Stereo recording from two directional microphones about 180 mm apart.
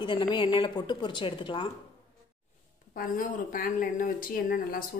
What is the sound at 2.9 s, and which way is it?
Speech, 50° left (ahead or behind).